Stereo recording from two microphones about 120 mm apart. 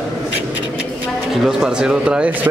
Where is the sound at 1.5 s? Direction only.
5° right (ahead or behind).